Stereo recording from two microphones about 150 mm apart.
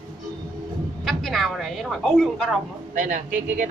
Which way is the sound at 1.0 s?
Centre (ahead or behind).